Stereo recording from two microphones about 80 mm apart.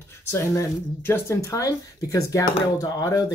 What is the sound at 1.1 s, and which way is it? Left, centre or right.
Speech, left.